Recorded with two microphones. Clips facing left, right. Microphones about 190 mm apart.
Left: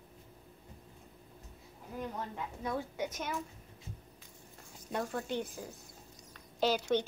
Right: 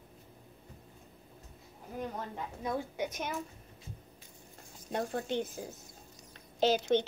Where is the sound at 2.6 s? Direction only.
15° right (ahead or behind).